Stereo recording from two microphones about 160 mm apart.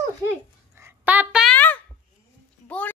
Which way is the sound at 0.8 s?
15° right (ahead or behind).